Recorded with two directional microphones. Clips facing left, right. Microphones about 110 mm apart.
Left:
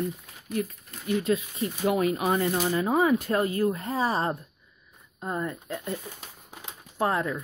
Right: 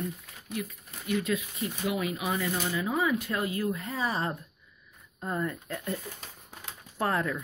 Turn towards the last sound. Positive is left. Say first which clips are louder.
# left 3 dB
turn(degrees=20)  # may be behind; listen again after turning